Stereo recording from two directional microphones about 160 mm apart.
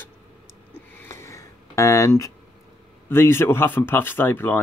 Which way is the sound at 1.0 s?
20° left (ahead or behind).